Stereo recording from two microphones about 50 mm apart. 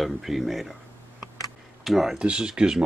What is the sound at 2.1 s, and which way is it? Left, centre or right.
Speech, centre.